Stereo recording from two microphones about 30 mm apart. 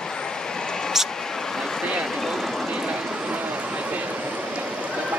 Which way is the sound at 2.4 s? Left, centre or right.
Centre.